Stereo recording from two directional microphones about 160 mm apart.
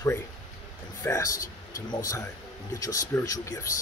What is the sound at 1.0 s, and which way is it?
Speech, 20° left (ahead or behind).